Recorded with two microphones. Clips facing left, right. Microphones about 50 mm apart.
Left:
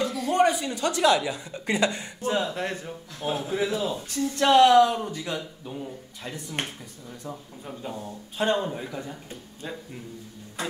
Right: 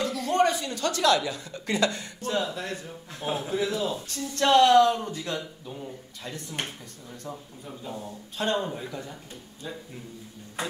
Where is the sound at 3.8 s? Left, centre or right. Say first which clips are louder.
Left 3 dB; centre.